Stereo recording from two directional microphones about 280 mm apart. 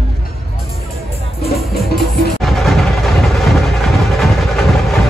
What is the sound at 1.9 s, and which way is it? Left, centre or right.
Music, centre.